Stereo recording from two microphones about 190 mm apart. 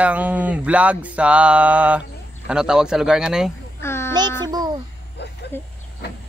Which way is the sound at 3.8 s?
15° left (ahead or behind).